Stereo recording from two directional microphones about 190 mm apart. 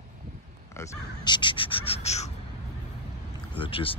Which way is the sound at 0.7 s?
20° left (ahead or behind).